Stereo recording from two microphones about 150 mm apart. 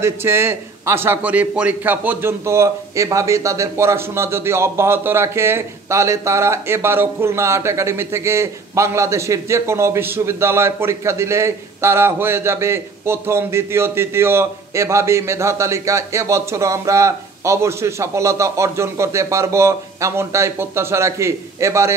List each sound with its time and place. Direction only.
0.0 s a man's voice: 15° right (ahead or behind)